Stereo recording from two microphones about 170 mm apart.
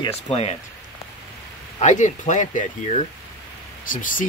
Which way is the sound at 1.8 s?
45° left (ahead or behind).